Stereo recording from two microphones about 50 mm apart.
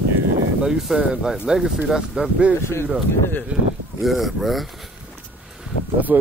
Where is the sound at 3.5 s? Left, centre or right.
Right.